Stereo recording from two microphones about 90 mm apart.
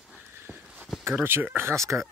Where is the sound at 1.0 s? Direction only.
25° right (ahead or behind).